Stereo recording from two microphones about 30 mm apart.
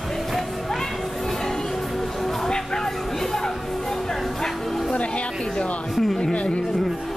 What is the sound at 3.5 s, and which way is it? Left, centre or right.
Music, centre.